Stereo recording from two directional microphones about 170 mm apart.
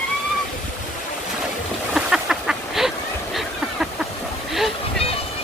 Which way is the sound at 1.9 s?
5° right (ahead or behind).